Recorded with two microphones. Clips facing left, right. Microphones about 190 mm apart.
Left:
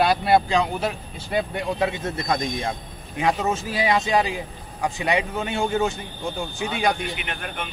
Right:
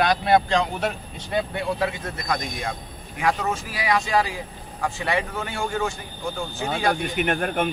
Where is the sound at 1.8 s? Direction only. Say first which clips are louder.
Left 2 dB; 25° left (ahead or behind).